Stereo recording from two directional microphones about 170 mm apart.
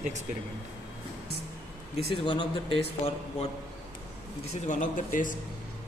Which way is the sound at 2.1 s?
30° left (ahead or behind).